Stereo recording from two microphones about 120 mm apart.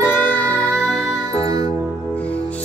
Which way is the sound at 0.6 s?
30° right (ahead or behind).